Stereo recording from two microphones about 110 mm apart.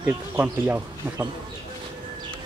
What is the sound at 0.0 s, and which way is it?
Speech, 15° right (ahead or behind).